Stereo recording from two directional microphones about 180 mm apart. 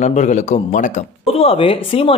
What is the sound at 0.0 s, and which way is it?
Speech, 40° left (ahead or behind).